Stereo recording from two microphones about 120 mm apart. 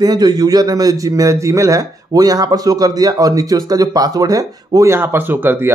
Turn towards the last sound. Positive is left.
turn(degrees=-15)  # may be behind; listen again after turning